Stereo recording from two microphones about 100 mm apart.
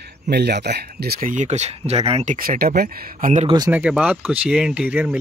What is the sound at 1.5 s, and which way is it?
Speech, 90° right.